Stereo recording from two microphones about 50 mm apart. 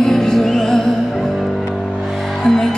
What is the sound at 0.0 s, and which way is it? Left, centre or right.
Music, centre.